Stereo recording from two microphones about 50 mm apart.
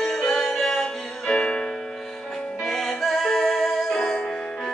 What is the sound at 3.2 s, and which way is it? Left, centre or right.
Music, centre.